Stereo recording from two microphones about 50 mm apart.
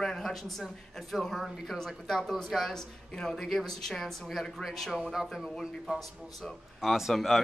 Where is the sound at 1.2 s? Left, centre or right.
Centre.